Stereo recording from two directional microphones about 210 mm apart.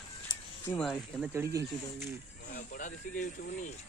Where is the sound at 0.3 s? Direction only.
20° left (ahead or behind).